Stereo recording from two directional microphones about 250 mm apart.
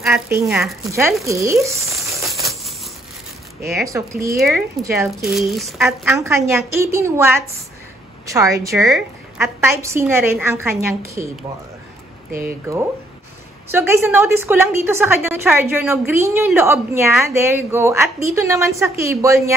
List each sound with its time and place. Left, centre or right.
0.0 s a woman's voice: centre
2.0 s a sound: centre
2.4 s a sound: centre
3.8 s a woman's voice: centre
4.4 s speech: centre
6.1 s a woman's voice: centre
12.3 s speech: right
13.7 s a woman's voice: centre